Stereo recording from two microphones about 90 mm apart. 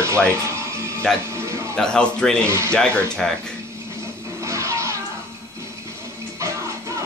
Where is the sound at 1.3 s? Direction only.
30° right (ahead or behind).